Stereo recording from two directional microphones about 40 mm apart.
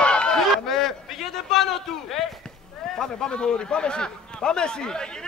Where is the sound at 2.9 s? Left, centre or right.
Centre.